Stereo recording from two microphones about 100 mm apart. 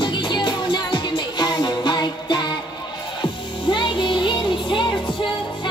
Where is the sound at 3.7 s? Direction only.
55° left (ahead or behind).